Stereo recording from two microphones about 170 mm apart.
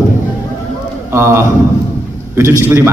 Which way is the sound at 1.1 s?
15° right (ahead or behind).